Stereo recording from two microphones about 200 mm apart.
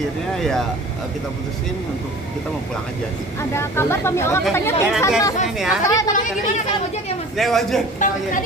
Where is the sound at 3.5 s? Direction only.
10° left (ahead or behind).